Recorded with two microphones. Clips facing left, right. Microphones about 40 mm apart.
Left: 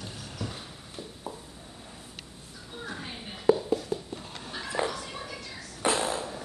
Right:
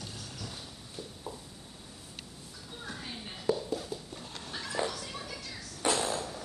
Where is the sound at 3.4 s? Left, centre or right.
Centre.